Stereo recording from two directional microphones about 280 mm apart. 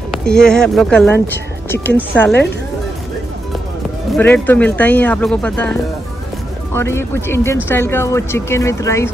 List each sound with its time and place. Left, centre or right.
0.1 s speech: centre
4.1 s speech: centre